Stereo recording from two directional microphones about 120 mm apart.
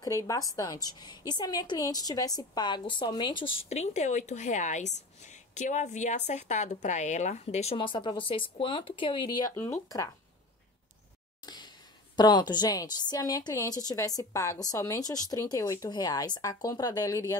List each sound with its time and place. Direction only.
0.0 s a woman's voice: 25° left (ahead or behind)
3.6 s speech: 65° left (ahead or behind)
7.7 s speech: 45° left (ahead or behind)
9.6 s speech: 25° left (ahead or behind)
11.4 s a sound: 35° left (ahead or behind)
12.2 s a woman's voice: 35° left (ahead or behind)